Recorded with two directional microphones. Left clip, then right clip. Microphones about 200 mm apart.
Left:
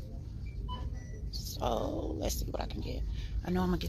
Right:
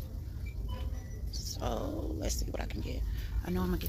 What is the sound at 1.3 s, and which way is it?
Speech, 15° right (ahead or behind).